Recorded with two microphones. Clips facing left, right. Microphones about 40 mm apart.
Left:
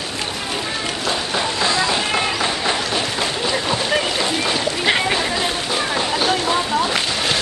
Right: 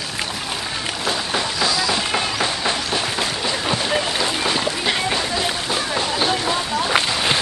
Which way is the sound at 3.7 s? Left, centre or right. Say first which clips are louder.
Even; centre.